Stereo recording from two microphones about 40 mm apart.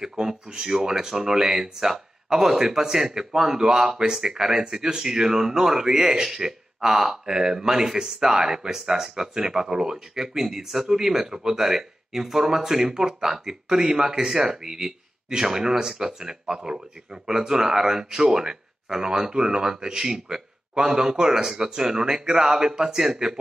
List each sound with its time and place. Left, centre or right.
0.1 s speech: centre
17.3 s speech: centre